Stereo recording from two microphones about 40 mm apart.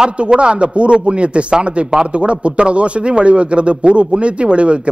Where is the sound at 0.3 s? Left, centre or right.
Right.